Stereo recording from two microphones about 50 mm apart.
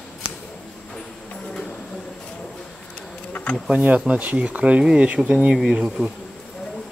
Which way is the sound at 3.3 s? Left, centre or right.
Left.